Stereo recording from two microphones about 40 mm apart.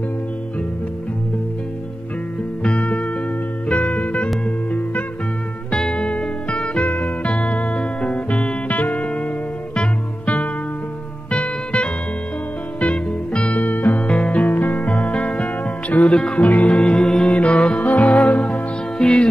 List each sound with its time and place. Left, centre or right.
2.8 s music: left
5.7 s music: left
13.7 s music: left
14.0 s music: left
14.5 s music: left
17.7 s music: left
18.9 s music: left